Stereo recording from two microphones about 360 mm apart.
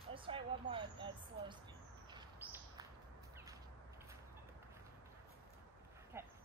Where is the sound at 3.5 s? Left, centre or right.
Centre.